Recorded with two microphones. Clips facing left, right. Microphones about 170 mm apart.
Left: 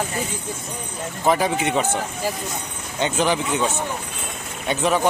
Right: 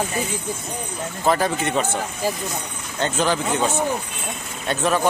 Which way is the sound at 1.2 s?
15° left (ahead or behind).